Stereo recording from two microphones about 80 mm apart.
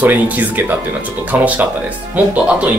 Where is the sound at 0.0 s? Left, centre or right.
Right.